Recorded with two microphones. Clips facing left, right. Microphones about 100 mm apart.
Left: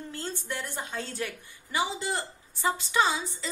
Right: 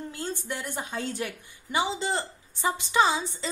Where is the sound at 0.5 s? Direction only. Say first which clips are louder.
Right 1 dB; 15° right (ahead or behind).